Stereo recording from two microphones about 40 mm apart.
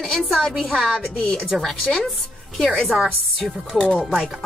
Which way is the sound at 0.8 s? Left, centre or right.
Centre.